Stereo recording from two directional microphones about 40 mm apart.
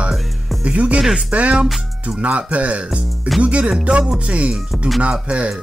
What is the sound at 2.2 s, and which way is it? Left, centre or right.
Speech, right.